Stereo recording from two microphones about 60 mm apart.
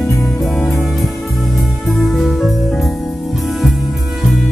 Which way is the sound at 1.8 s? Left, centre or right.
Centre.